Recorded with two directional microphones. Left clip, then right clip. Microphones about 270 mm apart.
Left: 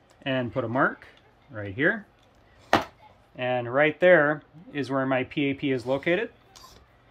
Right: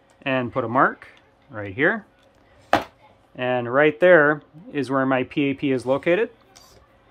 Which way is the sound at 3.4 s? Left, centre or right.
Centre.